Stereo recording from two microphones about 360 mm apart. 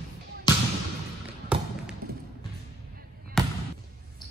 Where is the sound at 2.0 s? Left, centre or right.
Right.